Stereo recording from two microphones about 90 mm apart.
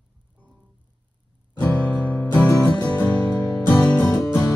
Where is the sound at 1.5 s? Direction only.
20° left (ahead or behind).